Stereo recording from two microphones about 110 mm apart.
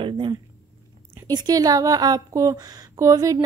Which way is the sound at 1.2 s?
35° right (ahead or behind).